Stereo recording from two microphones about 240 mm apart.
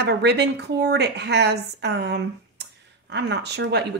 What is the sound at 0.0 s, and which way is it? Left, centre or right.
Speech, right.